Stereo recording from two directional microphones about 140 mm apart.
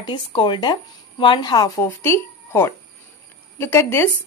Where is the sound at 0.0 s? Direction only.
35° left (ahead or behind).